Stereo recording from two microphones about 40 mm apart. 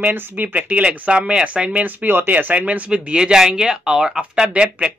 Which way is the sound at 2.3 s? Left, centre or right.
Right.